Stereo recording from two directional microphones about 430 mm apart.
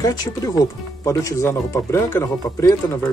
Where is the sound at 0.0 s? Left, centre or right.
Centre.